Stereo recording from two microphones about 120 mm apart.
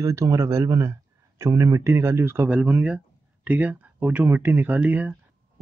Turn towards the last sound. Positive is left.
turn(degrees=-15)  # may be behind; listen again after turning